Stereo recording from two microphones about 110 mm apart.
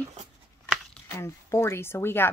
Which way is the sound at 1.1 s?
30° left (ahead or behind).